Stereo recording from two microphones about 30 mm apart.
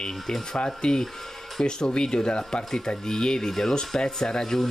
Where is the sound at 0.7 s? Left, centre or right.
Left.